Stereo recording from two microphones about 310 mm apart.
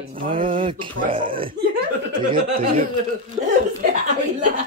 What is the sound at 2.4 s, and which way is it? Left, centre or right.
Speech, right.